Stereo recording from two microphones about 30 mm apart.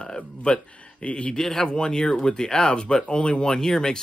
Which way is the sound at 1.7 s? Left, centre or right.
Left.